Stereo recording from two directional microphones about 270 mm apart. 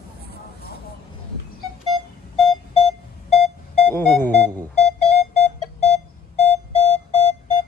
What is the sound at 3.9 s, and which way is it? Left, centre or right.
Music, centre.